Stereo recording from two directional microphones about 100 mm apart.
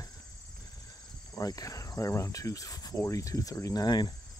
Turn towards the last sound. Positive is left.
turn(degrees=45)  # may be behind; listen again after turning